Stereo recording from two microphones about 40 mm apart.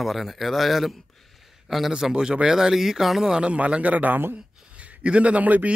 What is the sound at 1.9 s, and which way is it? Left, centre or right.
Speech, centre.